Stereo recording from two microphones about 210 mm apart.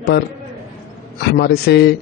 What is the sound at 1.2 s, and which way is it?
Speech, 50° left (ahead or behind).